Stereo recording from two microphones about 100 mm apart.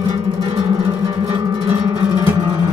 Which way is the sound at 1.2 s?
50° right (ahead or behind).